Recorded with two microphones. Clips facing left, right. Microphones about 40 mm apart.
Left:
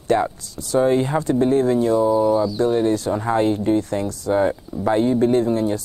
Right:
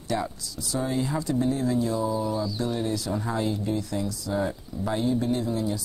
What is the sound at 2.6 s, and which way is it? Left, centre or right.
Speech, left.